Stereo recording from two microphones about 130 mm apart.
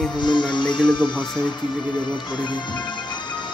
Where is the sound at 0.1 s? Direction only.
35° left (ahead or behind).